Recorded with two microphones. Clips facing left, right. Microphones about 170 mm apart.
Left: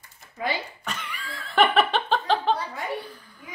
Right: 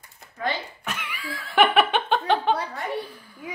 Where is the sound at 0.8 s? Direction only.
5° right (ahead or behind).